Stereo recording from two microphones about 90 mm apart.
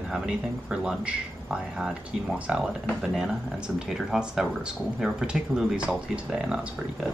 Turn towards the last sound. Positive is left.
turn(degrees=-10)  # may be behind; listen again after turning